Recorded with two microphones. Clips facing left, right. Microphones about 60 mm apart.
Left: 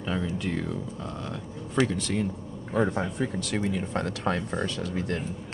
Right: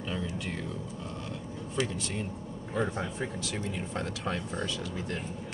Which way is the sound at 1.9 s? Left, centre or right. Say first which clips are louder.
Left 7 dB; left.